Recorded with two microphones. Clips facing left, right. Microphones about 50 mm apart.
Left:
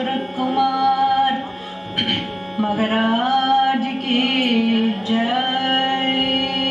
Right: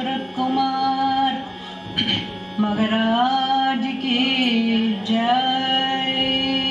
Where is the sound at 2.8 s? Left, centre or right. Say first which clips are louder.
Even; centre.